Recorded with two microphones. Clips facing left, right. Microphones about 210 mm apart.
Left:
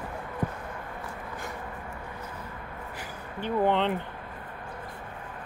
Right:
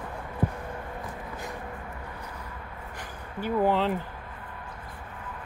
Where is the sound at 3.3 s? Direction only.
5° right (ahead or behind).